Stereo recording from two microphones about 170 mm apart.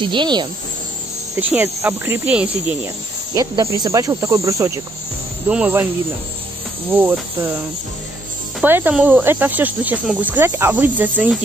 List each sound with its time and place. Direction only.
0.0 s speech: 30° right (ahead or behind)
1.3 s speech: 10° right (ahead or behind)
3.3 s speech: 25° right (ahead or behind)
6.9 s speech: 15° right (ahead or behind)
8.6 s speech: 10° right (ahead or behind)